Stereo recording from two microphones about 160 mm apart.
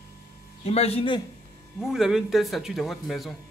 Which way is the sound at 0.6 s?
40° left (ahead or behind).